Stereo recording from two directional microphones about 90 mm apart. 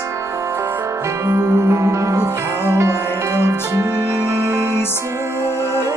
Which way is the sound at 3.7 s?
25° right (ahead or behind).